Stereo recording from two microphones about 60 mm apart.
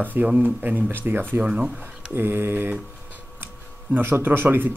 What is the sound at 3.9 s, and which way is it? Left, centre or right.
Speech, right.